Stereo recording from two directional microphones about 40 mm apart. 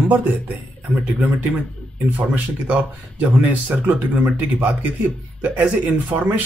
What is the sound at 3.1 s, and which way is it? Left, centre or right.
A man's voice, right.